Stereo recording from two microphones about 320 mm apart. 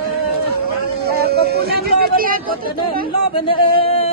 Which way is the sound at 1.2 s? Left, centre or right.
Right.